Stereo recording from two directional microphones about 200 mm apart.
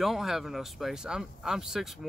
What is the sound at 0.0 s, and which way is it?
Speech, centre (ahead or behind).